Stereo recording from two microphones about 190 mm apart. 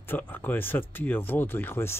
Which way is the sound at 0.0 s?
10° left (ahead or behind).